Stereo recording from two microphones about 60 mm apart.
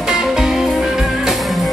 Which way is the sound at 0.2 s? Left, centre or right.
Centre.